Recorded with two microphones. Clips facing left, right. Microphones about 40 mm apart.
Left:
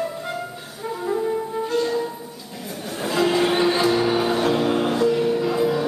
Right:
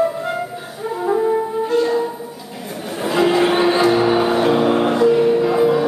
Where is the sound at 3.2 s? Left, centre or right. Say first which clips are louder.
Right 4 dB; centre.